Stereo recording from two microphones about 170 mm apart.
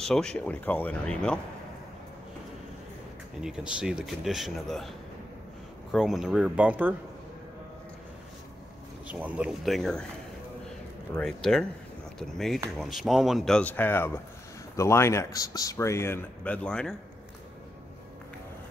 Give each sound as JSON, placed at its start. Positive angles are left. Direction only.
{"t": 0.0, "sound": "speech", "side_deg": 5}
{"t": 3.4, "sound": "speech", "side_deg": -5}
{"t": 5.9, "sound": "speech", "side_deg": 0}
{"t": 9.0, "sound": "speech", "side_deg": -10}
{"t": 11.1, "sound": "speech", "side_deg": 5}